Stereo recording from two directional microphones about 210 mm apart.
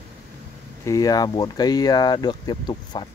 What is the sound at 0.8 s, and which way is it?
Speech, 15° left (ahead or behind).